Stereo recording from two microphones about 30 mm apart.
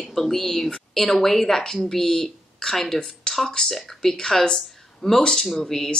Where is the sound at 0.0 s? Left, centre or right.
Centre.